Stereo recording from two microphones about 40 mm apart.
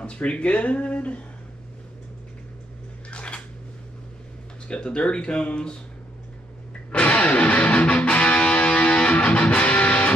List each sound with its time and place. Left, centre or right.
0.0 s speech: left
3.1 s a sound: left
4.6 s speech: left
6.9 s music: left